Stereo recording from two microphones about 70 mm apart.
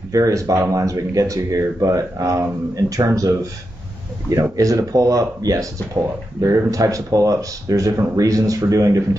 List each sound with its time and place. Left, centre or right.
0.1 s speech: right